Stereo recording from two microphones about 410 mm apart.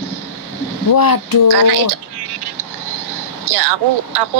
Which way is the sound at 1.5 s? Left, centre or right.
Right.